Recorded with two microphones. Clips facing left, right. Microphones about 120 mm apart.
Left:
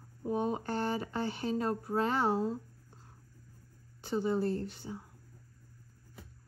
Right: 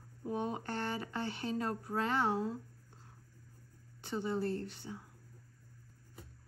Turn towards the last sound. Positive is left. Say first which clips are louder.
# left 3 dB
turn(degrees=40)  # may be behind; listen again after turning